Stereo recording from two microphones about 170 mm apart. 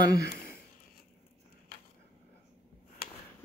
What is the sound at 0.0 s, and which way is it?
Speech, 60° left (ahead or behind).